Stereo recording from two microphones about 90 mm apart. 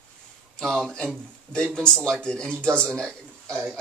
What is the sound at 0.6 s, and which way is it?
A man's voice, 5° left (ahead or behind).